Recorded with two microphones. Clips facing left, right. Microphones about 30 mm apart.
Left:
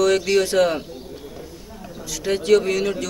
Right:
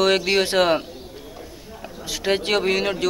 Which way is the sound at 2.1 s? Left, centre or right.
Right.